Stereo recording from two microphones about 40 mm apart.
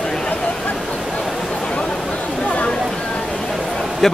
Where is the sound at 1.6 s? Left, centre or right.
Left.